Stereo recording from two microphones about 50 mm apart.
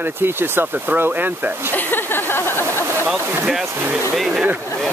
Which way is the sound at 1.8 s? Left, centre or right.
Left.